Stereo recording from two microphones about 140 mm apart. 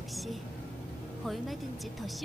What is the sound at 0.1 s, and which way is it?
Music, centre (ahead or behind).